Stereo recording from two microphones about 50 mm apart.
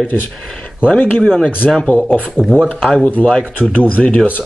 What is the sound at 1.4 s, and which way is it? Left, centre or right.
Speech, left.